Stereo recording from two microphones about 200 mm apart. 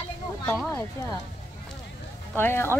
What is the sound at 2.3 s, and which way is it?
Speech, 10° left (ahead or behind).